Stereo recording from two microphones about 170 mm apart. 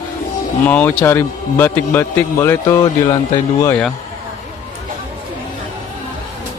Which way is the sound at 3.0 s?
25° left (ahead or behind).